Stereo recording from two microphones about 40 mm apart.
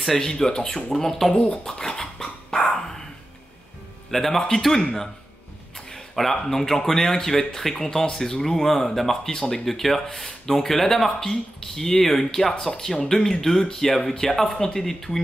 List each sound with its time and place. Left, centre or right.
0.0 s speech: centre
1.3 s speech: left
1.7 s dog: centre
4.1 s speech: centre
5.9 s speech: centre